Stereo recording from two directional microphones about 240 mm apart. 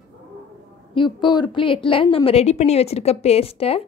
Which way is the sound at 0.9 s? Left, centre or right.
Centre.